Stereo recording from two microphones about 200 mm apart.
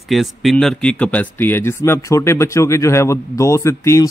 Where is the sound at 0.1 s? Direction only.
Centre (ahead or behind).